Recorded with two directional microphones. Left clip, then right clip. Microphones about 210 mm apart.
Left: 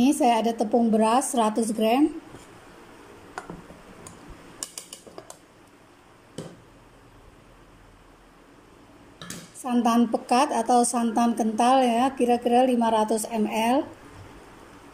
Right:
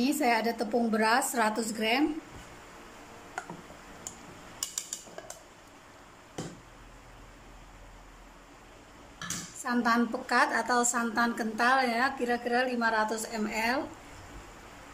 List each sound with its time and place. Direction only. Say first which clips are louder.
0.0 s a woman's voice: left 6 dB; 15° left (ahead or behind)
9.6 s a woman's voice: left 5 dB; 15° left (ahead or behind)